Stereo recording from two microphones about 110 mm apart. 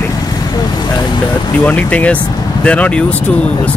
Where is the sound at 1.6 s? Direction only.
15° left (ahead or behind).